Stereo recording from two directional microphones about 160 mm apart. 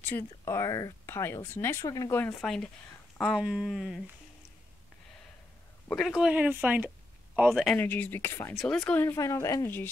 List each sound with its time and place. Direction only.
0.0 s speech: 15° left (ahead or behind)
2.4 s speech: 5° left (ahead or behind)
5.9 s speech: 5° left (ahead or behind)
7.7 s speech: 10° left (ahead or behind)
8.5 s speech: 5° left (ahead or behind)